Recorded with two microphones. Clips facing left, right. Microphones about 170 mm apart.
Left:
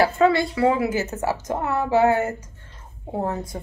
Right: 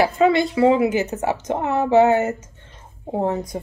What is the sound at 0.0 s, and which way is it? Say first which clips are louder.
A woman's voice: right 1 dB; 20° right (ahead or behind).